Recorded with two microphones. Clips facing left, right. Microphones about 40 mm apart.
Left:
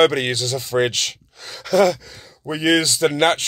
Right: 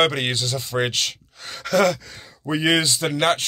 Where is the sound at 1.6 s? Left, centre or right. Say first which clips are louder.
Left 3 dB; right.